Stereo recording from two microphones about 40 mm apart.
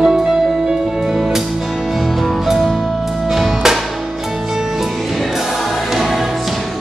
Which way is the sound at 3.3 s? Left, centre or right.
Centre.